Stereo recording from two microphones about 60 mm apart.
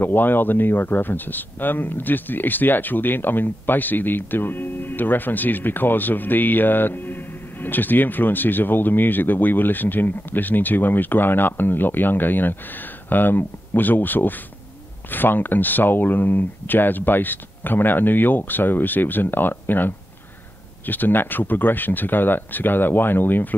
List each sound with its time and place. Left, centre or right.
0.0 s speech: left